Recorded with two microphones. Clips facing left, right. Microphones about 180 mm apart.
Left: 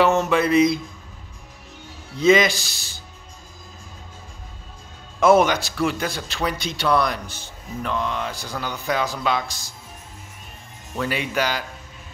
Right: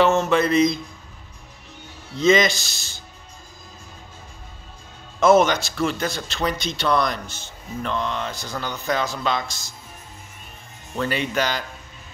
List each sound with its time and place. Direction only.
0.0 s speech: 15° left (ahead or behind)
2.1 s speech: 10° left (ahead or behind)
5.2 s speech: 10° left (ahead or behind)
11.0 s speech: 10° left (ahead or behind)